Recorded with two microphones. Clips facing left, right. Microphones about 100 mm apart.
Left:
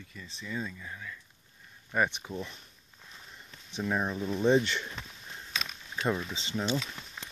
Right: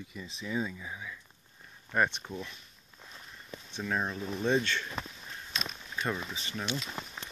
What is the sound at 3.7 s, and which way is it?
Speech, 10° left (ahead or behind).